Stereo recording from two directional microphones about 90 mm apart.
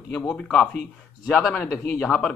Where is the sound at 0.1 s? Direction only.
10° left (ahead or behind).